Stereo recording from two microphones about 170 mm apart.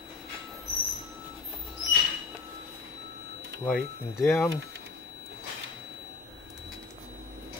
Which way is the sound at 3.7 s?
5° left (ahead or behind).